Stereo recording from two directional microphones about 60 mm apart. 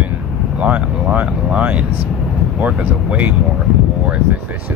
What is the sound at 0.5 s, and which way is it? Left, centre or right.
Speech, right.